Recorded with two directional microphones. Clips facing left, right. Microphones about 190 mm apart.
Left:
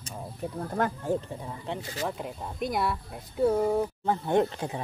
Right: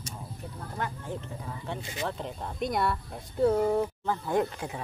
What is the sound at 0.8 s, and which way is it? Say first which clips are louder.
Speech: left 8 dB; 40° left (ahead or behind).